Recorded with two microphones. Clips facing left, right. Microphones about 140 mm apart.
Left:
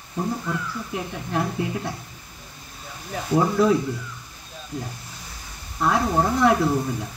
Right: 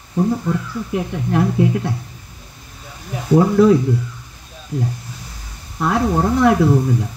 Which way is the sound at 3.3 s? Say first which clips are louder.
Right 7 dB; 60° right (ahead or behind).